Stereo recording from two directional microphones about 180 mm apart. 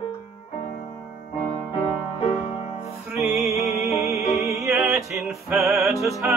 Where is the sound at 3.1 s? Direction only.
5° right (ahead or behind).